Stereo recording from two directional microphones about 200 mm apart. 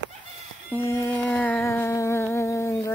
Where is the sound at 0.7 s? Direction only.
15° left (ahead or behind).